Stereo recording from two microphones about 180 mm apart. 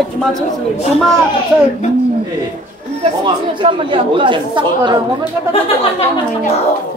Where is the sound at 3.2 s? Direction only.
30° right (ahead or behind).